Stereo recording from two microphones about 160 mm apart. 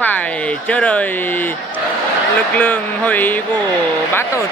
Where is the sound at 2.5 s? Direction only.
10° left (ahead or behind).